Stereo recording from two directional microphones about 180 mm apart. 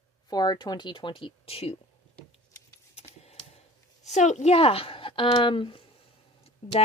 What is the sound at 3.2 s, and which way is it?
Speech, 40° left (ahead or behind).